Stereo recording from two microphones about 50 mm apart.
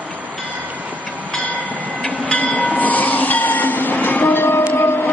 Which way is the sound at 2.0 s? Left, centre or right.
Left.